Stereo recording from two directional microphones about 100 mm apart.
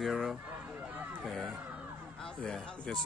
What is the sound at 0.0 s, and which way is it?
Speech, centre (ahead or behind).